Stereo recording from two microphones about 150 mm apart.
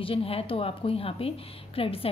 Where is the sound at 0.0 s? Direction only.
40° left (ahead or behind).